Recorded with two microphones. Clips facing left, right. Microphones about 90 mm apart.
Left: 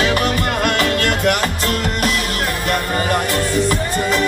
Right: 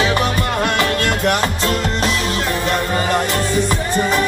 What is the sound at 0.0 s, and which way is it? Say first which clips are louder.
Music: even; 20° right (ahead or behind).